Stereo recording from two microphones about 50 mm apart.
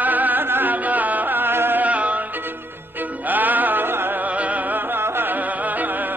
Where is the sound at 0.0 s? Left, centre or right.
Right.